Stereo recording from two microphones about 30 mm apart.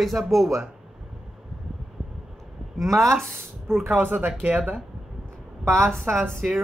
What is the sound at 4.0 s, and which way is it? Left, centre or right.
Speech, right.